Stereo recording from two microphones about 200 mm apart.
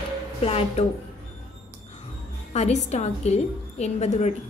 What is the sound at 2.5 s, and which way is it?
A woman's voice, 35° left (ahead or behind).